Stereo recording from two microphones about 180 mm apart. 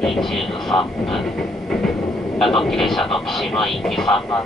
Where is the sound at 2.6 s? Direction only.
Centre (ahead or behind).